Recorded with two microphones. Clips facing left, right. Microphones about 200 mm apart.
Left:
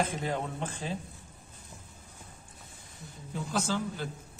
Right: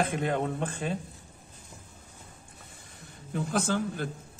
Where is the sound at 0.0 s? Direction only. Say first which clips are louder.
Right 4 dB; 60° right (ahead or behind).